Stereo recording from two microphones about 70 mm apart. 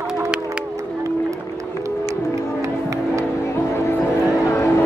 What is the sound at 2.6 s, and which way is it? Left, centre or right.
Music, right.